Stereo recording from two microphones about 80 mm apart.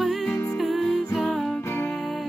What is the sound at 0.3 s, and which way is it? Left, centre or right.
Music, left.